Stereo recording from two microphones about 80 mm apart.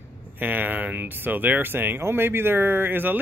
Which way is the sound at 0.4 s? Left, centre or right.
Right.